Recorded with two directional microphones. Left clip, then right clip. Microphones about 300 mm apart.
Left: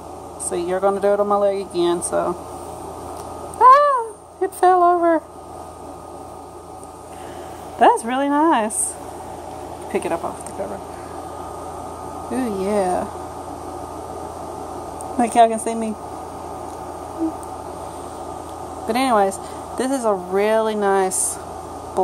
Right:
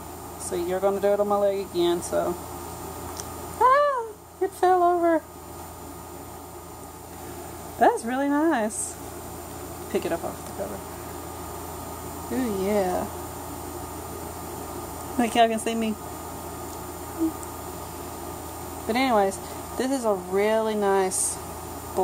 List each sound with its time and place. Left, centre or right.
0.5 s speech: centre
3.5 s cat: centre
7.8 s speech: centre
9.9 s a woman's voice: centre
12.4 s a woman's voice: centre
15.1 s a woman's voice: centre
18.9 s speech: centre